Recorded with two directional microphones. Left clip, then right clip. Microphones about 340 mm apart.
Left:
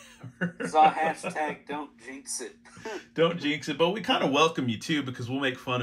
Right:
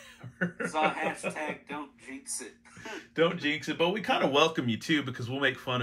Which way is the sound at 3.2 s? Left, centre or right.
Centre.